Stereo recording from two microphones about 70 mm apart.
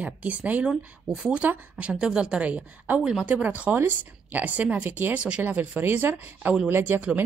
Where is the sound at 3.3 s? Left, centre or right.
Right.